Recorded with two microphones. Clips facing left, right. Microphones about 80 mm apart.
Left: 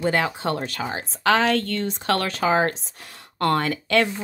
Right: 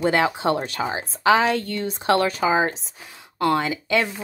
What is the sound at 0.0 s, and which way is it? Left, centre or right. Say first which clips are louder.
A woman's voice: right 3 dB; right.